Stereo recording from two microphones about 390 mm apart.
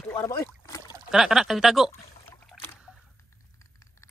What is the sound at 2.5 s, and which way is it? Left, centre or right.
Rowboat, centre.